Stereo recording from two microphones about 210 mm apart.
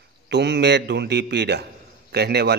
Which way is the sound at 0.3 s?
55° right (ahead or behind).